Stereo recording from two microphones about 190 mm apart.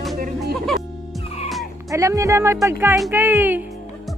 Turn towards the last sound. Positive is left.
turn(degrees=-10)  # may be behind; listen again after turning